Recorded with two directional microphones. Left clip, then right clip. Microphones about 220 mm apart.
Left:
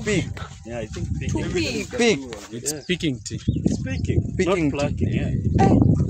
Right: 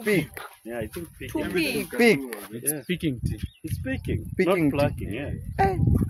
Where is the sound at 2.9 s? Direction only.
50° left (ahead or behind).